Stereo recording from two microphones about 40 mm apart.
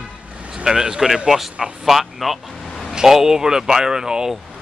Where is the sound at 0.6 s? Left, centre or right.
Centre.